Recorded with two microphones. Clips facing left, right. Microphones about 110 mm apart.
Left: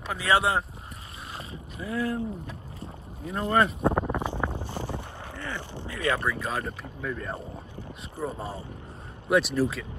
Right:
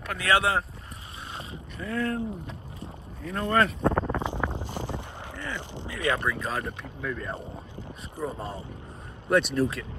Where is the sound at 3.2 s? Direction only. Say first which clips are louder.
Even; 25° left (ahead or behind).